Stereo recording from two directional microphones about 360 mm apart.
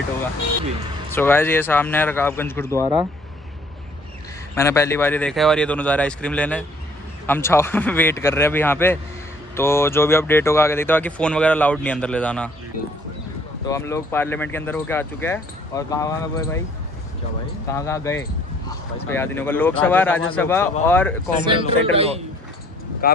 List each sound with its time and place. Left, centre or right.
1.1 s speech: centre
4.6 s speech: centre
13.7 s speech: centre
17.6 s speech: centre
21.8 s a man's voice: centre
23.0 s speech: left